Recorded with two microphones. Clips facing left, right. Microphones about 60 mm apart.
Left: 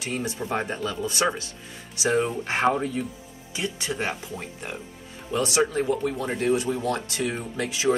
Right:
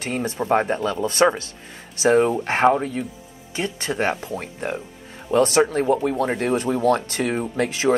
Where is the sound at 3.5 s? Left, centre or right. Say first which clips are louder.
Right 4 dB; right.